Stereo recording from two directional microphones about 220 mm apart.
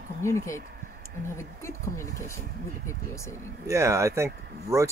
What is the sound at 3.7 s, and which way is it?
Speech, 15° right (ahead or behind).